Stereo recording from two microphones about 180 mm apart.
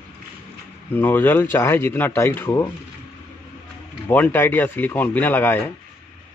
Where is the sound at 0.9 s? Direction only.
10° left (ahead or behind).